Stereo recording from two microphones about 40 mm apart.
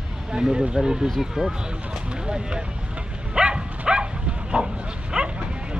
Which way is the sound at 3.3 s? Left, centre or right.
Right.